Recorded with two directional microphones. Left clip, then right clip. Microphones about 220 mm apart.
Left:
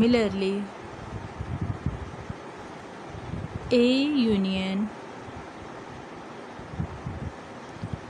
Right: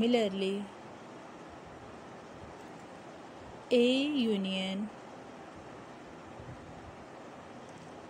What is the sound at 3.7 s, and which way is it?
Speech, centre (ahead or behind).